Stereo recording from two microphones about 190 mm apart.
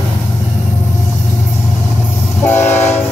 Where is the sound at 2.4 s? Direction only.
10° left (ahead or behind).